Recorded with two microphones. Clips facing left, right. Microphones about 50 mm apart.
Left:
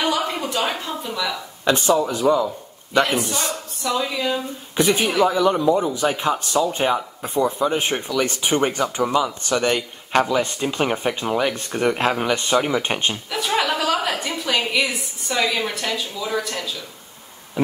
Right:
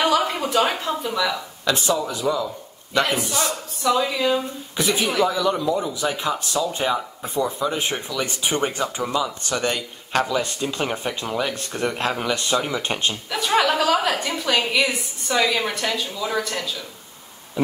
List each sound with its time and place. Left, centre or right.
0.0 s a sound: centre
1.6 s a man's voice: left
3.1 s a woman's voice: centre
4.7 s a woman's voice: left
5.0 s speech: centre
5.3 s a woman's voice: left
7.9 s speech: centre
13.3 s a woman's voice: centre